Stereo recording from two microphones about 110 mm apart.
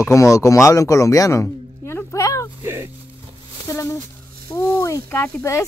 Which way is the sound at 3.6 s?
30° left (ahead or behind).